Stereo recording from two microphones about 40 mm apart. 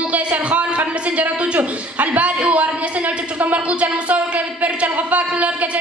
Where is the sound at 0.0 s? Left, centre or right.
Right.